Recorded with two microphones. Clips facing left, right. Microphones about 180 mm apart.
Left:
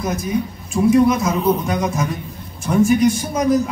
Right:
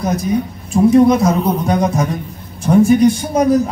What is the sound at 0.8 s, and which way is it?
A woman's voice, 35° right (ahead or behind).